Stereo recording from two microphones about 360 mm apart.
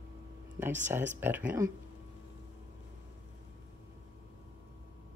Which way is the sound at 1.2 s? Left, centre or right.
Centre.